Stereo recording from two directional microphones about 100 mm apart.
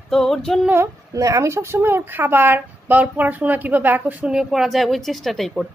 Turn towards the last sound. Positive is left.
turn(degrees=5)  # may be behind; listen again after turning